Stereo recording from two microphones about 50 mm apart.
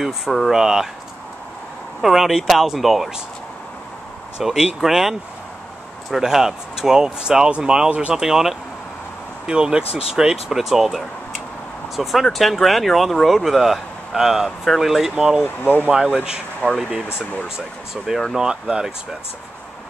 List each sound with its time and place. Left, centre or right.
0.5 s speech: centre
2.0 s speech: centre
4.4 s speech: centre
6.1 s speech: centre
8.1 s speech: centre
15.4 s speech: left
16.6 s speech: left
17.6 s speech: centre